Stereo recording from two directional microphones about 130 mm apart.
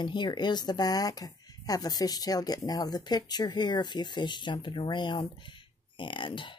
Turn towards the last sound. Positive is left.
turn(degrees=40)  # may be behind; listen again after turning